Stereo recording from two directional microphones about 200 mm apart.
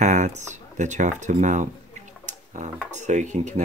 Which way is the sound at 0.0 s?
35° right (ahead or behind).